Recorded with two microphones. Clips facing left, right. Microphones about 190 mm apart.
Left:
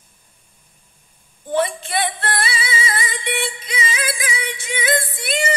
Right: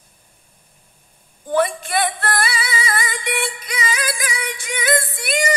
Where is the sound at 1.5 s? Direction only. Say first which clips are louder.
Right 2 dB; 25° left (ahead or behind).